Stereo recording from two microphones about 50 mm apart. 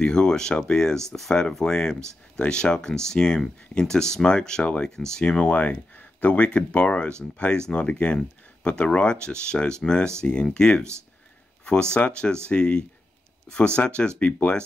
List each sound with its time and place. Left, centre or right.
0.0 s speech: centre
5.4 s speech: left
12.0 s speech: left